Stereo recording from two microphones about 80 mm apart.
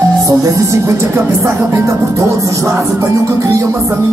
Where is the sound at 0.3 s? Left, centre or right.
Right.